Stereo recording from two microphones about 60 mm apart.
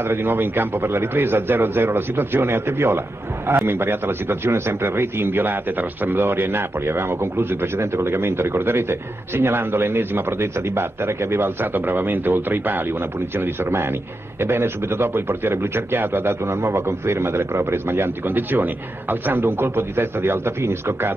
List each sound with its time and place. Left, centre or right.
0.0 s a man's voice: right